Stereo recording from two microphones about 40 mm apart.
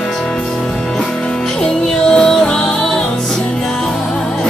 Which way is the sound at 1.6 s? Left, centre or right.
Centre.